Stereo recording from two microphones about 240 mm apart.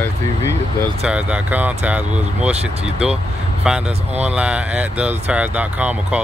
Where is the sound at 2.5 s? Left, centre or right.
Right.